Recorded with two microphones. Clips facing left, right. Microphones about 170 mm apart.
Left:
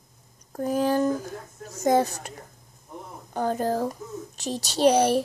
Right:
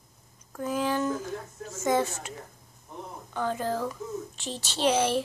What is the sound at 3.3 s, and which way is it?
Speech, 40° left (ahead or behind).